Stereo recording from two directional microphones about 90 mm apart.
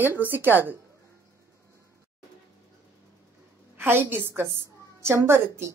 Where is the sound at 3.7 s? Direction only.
25° right (ahead or behind).